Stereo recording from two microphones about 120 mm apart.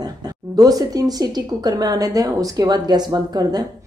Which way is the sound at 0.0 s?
30° right (ahead or behind).